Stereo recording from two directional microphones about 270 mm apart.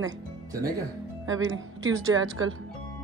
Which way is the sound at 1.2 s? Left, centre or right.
Right.